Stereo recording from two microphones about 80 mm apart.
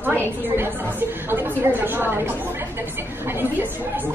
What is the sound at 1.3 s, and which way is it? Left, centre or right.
Speech, right.